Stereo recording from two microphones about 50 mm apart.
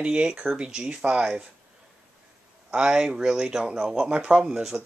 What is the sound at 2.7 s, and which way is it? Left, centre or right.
Speech, centre.